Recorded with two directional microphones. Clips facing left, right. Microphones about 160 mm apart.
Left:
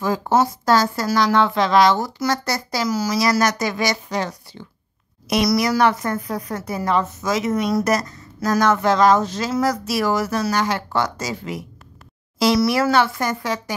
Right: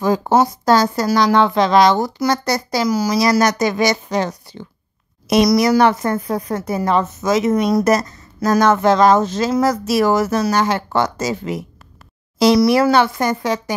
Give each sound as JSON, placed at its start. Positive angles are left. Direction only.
{"t": 0.3, "sound": "a woman's voice", "side_deg": -20}